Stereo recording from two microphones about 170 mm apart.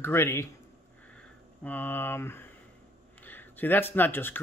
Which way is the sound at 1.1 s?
10° left (ahead or behind).